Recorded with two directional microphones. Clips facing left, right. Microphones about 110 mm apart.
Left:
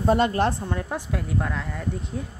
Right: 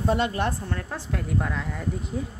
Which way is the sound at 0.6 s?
15° left (ahead or behind).